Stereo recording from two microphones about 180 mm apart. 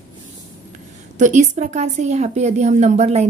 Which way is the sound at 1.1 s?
45° right (ahead or behind).